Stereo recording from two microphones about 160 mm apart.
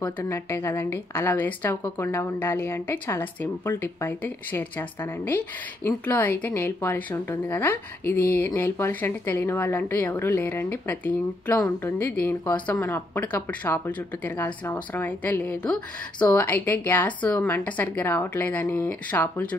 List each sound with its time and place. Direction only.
0.0 s a woman's voice: 15° left (ahead or behind)